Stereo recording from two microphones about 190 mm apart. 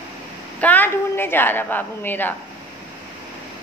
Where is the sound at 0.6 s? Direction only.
10° left (ahead or behind).